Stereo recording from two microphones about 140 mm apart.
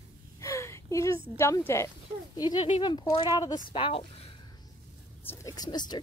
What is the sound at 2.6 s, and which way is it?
Speech, 35° left (ahead or behind).